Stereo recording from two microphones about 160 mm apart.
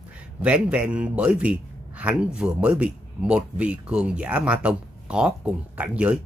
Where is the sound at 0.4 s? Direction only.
10° right (ahead or behind).